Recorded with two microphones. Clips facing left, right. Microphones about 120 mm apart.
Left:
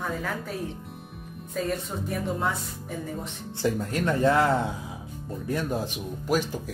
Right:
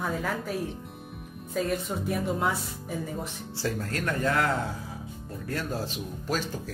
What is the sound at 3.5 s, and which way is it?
A man's voice, 20° left (ahead or behind).